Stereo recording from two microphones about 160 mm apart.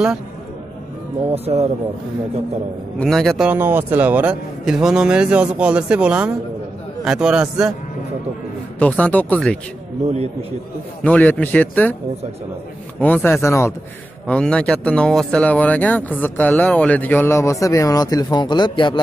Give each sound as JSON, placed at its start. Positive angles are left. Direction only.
{"t": 1.3, "sound": "speech", "side_deg": -40}
{"t": 3.0, "sound": "a man's voice", "side_deg": 0}
{"t": 3.4, "sound": "a man's voice", "side_deg": -15}
{"t": 8.7, "sound": "speech", "side_deg": 10}
{"t": 11.1, "sound": "speech", "side_deg": 10}
{"t": 13.0, "sound": "speech", "side_deg": 10}
{"t": 14.2, "sound": "speech", "side_deg": 5}